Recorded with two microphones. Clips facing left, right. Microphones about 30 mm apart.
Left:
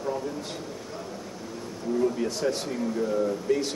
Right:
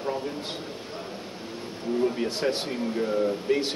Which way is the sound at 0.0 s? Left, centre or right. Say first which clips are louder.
Even; right.